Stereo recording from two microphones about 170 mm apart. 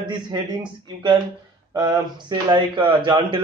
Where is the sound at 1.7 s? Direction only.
25° right (ahead or behind).